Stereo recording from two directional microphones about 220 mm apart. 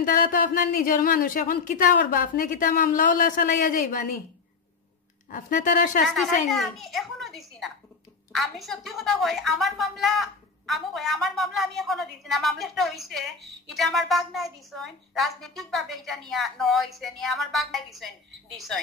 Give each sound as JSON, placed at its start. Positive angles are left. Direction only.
{"t": 0.0, "sound": "speech", "side_deg": 40}
{"t": 5.3, "sound": "speech", "side_deg": 40}
{"t": 6.1, "sound": "a woman's voice", "side_deg": 0}